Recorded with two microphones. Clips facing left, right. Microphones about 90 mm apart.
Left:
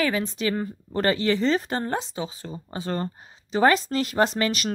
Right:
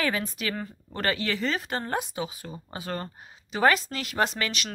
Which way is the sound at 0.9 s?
30° left (ahead or behind).